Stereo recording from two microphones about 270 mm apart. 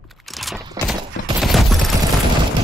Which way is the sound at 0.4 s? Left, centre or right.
Centre.